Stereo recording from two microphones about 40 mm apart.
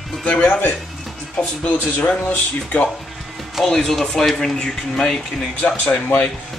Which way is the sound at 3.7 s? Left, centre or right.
Centre.